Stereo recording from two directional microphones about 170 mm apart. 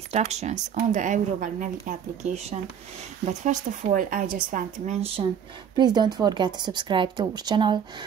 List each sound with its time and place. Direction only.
0.1 s speech: 40° right (ahead or behind)
5.8 s a woman's voice: 25° right (ahead or behind)